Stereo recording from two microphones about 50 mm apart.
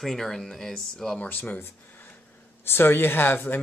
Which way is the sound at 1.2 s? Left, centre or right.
Left.